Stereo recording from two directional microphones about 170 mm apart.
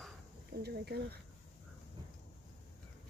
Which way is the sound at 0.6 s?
70° right (ahead or behind).